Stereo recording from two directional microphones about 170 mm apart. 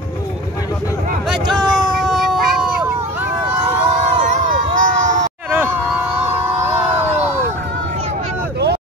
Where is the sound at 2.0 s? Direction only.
Centre (ahead or behind).